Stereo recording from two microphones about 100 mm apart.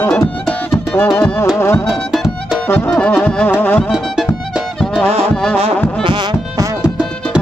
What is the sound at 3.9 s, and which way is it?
Music, 5° right (ahead or behind).